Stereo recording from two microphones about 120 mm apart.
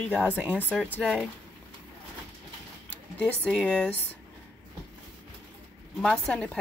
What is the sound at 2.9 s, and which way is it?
Speech, 10° left (ahead or behind).